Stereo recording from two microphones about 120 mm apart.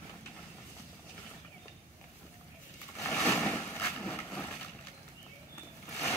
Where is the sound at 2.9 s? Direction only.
25° left (ahead or behind).